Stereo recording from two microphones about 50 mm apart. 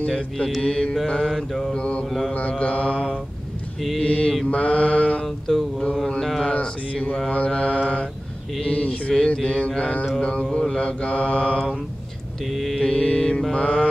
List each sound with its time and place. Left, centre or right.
0.0 s mantra: centre
1.3 s mantra: centre
1.7 s mantra: left
5.2 s mantra: centre
6.4 s mantra: left
12.5 s mantra: centre
12.8 s mantra: centre